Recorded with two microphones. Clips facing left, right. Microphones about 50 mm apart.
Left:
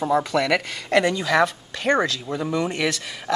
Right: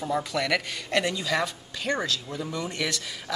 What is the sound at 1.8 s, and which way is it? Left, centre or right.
Speech, left.